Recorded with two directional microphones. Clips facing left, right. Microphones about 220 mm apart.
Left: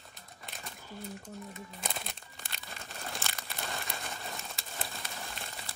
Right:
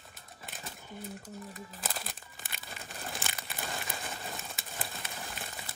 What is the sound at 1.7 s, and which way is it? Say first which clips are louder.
Crumpling: left 1 dB; 5° right (ahead or behind).